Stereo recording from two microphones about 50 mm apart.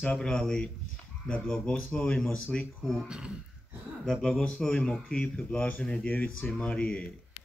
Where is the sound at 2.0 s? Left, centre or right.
Centre.